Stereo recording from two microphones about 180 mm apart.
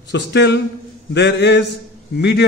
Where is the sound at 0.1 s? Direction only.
75° left (ahead or behind).